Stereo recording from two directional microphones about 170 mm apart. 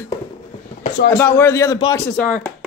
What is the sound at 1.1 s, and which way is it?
Speech, 15° left (ahead or behind).